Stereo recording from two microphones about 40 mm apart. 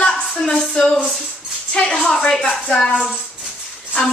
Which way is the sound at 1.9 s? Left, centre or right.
Centre.